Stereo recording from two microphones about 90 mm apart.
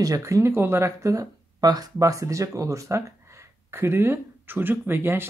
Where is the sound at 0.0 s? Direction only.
35° right (ahead or behind).